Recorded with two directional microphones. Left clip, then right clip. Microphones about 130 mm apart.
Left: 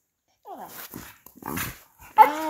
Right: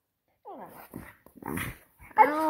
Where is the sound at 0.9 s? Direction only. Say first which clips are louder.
Left 3 dB; 10° left (ahead or behind).